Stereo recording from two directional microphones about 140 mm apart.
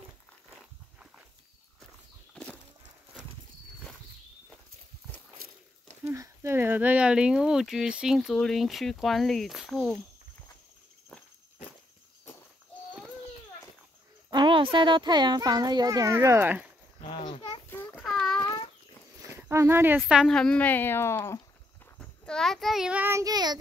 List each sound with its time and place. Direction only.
6.0 s speech: 20° right (ahead or behind); by 9.9 s centre (ahead or behind)
14.3 s a child's voice: 35° right (ahead or behind); by 16.7 s 10° right (ahead or behind)
17.0 s babbling: 35° left (ahead or behind)
17.6 s child singing: 15° left (ahead or behind)
18.0 s a sound: centre (ahead or behind)
19.3 s speech: 20° right (ahead or behind)
20.3 s speech: 10° left (ahead or behind)
21.9 s a child's voice: 5° left (ahead or behind); by 23.6 s 30° right (ahead or behind)